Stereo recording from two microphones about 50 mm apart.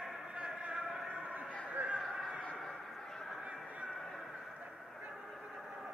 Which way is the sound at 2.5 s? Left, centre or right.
Centre.